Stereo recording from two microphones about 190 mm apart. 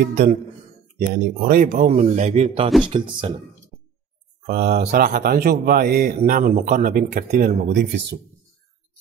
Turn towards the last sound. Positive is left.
turn(degrees=-55)  # may be behind; listen again after turning